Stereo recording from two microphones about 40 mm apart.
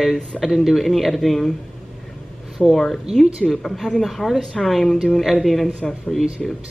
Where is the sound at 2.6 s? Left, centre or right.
Centre.